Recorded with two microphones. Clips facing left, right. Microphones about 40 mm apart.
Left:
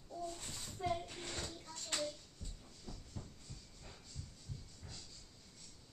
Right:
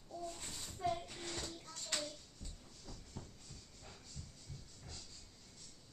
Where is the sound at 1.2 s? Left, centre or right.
Left.